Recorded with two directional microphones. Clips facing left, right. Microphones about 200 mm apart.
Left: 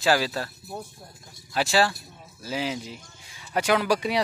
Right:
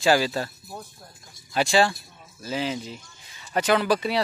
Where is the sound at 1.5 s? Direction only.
5° left (ahead or behind).